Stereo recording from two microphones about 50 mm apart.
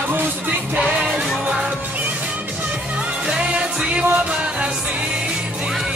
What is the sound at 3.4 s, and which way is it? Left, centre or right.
Music, right.